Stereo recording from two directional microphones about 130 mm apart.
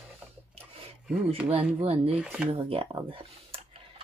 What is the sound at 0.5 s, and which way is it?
Rub, 50° right (ahead or behind).